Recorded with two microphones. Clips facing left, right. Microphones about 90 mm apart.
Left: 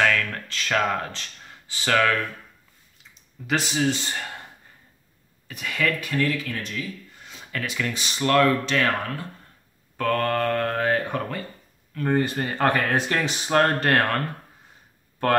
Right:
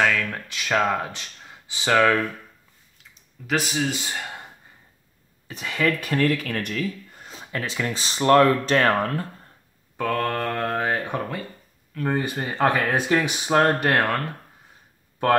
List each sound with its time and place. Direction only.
0.0 s a sound: 10° right (ahead or behind)
0.8 s speech: 10° right (ahead or behind)
3.0 s speech: centre (ahead or behind)
5.5 s speech: 25° right (ahead or behind)
5.9 s speech: 45° right (ahead or behind)
7.2 s a sound: 40° right (ahead or behind)
7.5 s speech: 30° right (ahead or behind)
8.6 s speech: 40° right (ahead or behind)
9.9 s speech: 10° right (ahead or behind)